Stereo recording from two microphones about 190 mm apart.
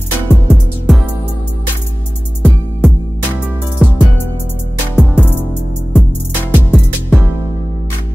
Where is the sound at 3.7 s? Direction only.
Centre (ahead or behind).